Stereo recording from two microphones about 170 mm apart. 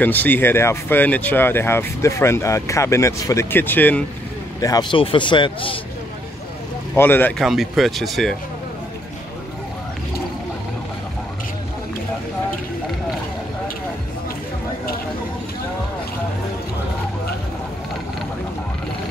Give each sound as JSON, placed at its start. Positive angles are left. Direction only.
{"t": 0.0, "sound": "speech", "side_deg": 10}
{"t": 4.6, "sound": "a man's voice", "side_deg": 20}
{"t": 7.0, "sound": "speech", "side_deg": 10}
{"t": 7.4, "sound": "speech", "side_deg": 0}